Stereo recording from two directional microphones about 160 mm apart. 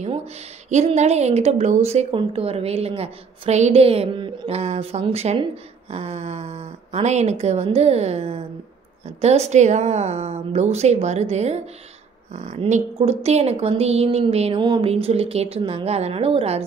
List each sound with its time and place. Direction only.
0.0 s a woman's voice: 40° right (ahead or behind)